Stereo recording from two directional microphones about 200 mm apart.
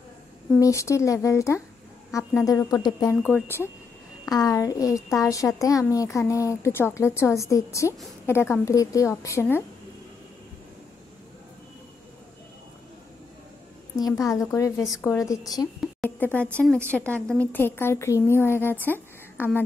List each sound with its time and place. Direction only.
0.6 s a child's voice: 15° left (ahead or behind)
13.9 s a child's voice: 15° left (ahead or behind)
14.8 s a woman's voice: centre (ahead or behind)
15.0 s a child's voice: 15° left (ahead or behind)
16.0 s a sound: 10° left (ahead or behind)
16.5 s a child's voice: 5° left (ahead or behind)